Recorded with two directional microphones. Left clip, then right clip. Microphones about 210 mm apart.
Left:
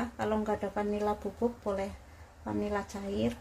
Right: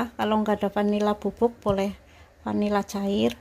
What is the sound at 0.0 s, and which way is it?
Speech, 40° right (ahead or behind).